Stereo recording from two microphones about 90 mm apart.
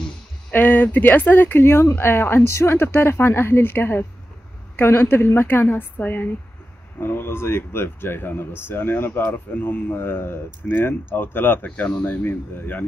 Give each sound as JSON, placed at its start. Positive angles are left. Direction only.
{"t": 0.5, "sound": "speech", "side_deg": 20}